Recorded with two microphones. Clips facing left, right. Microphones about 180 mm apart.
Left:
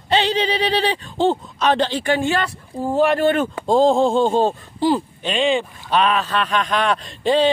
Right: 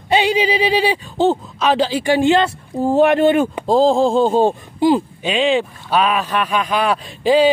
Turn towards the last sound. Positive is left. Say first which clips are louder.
# right 4 dB
turn(degrees=-5)  # may be behind; listen again after turning